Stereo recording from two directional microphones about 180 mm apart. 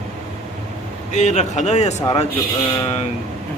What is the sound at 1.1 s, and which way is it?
Speech, 40° left (ahead or behind).